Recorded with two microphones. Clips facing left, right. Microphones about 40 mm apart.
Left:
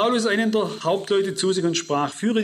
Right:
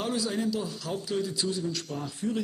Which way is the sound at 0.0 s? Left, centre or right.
Left.